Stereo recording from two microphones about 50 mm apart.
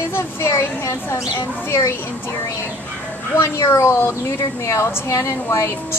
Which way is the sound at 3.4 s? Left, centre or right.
Left.